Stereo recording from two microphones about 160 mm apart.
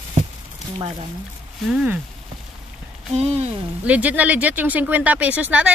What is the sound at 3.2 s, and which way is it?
Speech, 40° right (ahead or behind).